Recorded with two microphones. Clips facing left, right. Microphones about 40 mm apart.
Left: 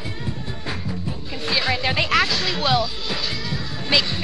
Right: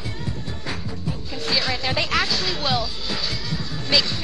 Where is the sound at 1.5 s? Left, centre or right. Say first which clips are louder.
Left 2 dB; centre.